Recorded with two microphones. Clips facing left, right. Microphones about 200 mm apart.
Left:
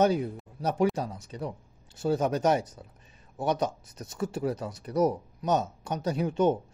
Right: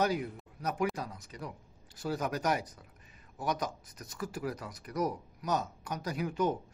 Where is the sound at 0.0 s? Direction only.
25° left (ahead or behind).